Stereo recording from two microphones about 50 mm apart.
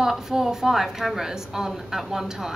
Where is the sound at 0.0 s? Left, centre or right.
Centre.